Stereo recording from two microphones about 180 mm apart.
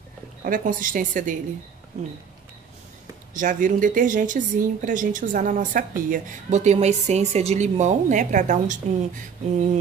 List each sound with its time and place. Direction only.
0.4 s a woman's voice: 50° right (ahead or behind)
3.3 s a woman's voice: 45° right (ahead or behind)